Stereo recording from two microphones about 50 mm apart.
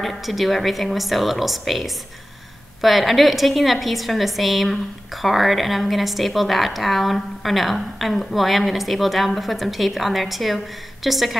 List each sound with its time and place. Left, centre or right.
0.0 s a woman's voice: centre
2.8 s a woman's voice: centre